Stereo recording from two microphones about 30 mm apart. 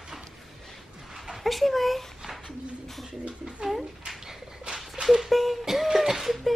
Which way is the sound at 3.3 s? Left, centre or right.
Right.